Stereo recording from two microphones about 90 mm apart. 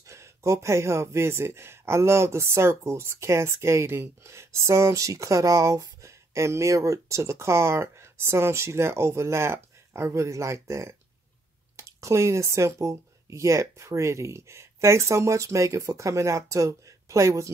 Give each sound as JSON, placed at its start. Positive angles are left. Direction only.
{"t": 0.0, "sound": "speech", "side_deg": -35}